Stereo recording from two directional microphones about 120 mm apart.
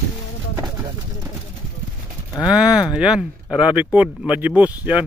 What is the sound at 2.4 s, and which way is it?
Speech, 5° right (ahead or behind).